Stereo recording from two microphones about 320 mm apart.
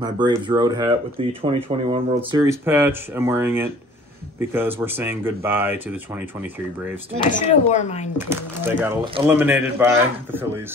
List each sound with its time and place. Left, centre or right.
0.0 s speech: centre
7.2 s speech: left
8.2 s a man's voice: centre